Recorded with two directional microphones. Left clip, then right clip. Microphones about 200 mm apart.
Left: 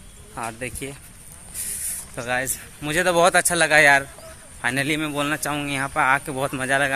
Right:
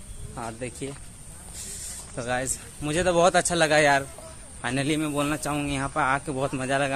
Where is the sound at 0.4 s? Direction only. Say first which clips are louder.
Left 4 dB; 5° left (ahead or behind).